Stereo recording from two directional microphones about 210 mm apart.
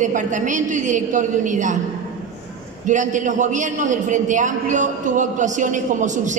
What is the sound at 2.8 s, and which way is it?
A man's voice, 35° right (ahead or behind).